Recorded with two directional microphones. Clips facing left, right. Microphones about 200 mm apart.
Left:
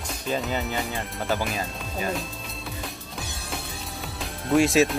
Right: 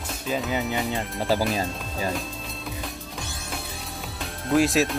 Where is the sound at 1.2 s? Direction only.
35° right (ahead or behind).